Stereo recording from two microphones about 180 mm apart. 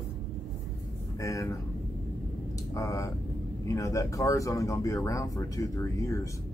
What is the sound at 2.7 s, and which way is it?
Speech, 15° left (ahead or behind).